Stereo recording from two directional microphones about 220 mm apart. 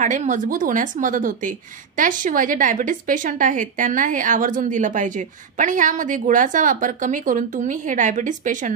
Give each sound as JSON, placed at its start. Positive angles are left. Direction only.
{"t": 0.0, "sound": "a woman's voice", "side_deg": -35}